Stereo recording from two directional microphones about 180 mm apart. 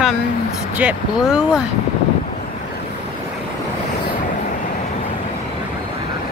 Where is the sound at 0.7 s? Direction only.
5° right (ahead or behind).